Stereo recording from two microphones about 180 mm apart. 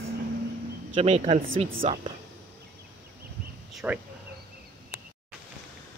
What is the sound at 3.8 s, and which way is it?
Speech, 10° right (ahead or behind).